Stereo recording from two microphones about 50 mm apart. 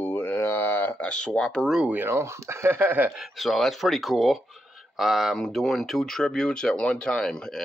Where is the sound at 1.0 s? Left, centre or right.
Left.